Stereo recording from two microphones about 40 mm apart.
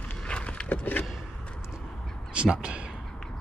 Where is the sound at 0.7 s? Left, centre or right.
Left.